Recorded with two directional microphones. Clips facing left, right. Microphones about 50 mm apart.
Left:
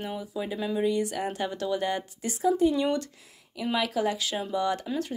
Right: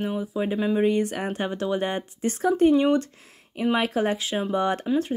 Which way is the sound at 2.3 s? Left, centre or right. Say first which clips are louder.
Right 4 dB; right.